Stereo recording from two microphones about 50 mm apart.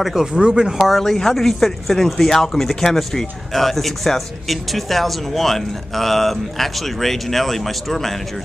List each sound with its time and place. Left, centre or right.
0.0 s speech: centre
0.3 s speech: centre
0.7 s speech: centre